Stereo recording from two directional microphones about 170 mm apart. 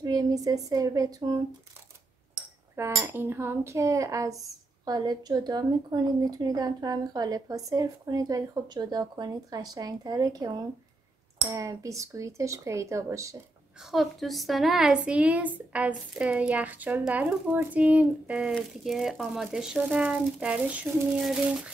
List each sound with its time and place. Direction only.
0.0 s a woman's voice: 20° right (ahead or behind)
2.7 s a woman's voice: 20° right (ahead or behind)
13.9 s speech: centre (ahead or behind)